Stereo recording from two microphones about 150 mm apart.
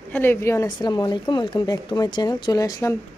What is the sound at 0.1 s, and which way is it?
A woman's voice, 15° left (ahead or behind).